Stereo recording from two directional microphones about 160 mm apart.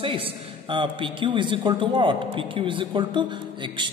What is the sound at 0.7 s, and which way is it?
A man's voice, 30° right (ahead or behind).